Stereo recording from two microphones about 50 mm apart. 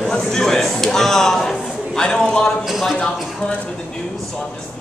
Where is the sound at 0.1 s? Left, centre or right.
Centre.